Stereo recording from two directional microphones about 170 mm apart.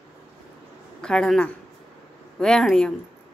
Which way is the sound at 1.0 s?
5° left (ahead or behind).